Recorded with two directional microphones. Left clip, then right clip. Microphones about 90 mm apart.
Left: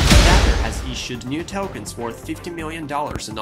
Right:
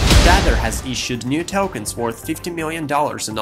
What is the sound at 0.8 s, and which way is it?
Speech, 35° right (ahead or behind).